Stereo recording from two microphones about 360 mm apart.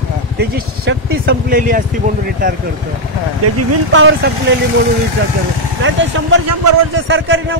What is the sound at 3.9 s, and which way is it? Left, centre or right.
Speech, right.